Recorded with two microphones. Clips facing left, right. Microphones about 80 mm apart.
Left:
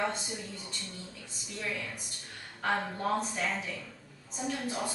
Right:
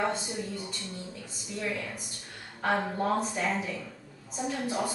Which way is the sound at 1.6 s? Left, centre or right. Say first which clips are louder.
Right 3 dB; centre.